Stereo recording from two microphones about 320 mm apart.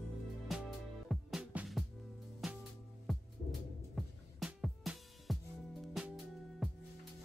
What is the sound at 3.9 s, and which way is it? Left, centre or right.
Music, centre.